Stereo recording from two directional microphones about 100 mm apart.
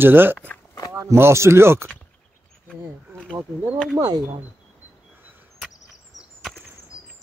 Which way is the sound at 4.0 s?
40° right (ahead or behind).